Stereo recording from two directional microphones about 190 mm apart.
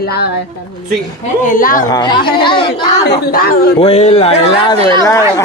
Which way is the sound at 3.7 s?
30° left (ahead or behind).